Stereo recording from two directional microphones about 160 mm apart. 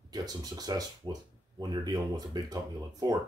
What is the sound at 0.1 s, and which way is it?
Speech, 25° right (ahead or behind).